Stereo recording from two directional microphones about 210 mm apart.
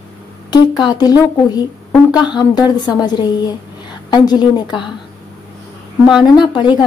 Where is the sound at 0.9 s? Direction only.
20° left (ahead or behind).